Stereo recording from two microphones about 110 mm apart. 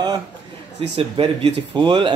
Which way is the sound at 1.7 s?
45° right (ahead or behind).